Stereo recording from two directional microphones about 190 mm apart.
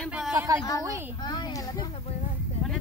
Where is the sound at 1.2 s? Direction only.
20° left (ahead or behind).